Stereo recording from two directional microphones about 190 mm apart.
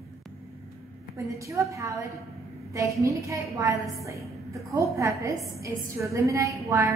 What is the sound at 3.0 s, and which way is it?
A woman's voice, 15° right (ahead or behind).